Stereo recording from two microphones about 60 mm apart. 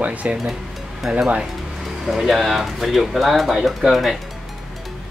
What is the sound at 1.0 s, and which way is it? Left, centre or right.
Speech, centre.